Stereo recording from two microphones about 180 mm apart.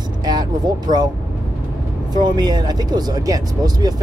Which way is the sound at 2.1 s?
25° right (ahead or behind).